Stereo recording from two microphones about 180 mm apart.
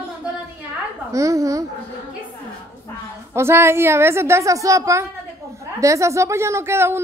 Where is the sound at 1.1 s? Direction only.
20° right (ahead or behind).